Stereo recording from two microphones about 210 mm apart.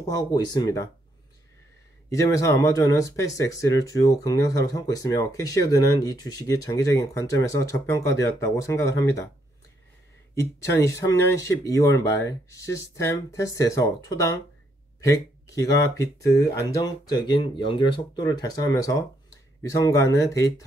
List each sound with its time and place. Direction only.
0.0 s speech: 20° left (ahead or behind)
2.0 s speech: 15° left (ahead or behind)
10.3 s speech: 10° left (ahead or behind)